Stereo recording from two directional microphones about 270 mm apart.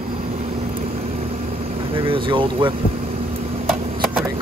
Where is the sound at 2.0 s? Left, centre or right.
Centre.